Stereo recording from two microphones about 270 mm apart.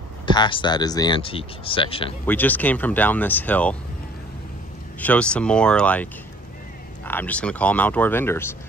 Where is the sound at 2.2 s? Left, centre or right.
Centre.